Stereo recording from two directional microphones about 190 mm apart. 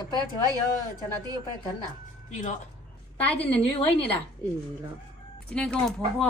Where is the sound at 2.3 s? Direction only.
40° left (ahead or behind).